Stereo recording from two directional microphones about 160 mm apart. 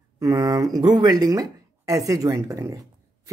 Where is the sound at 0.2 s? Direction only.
20° right (ahead or behind).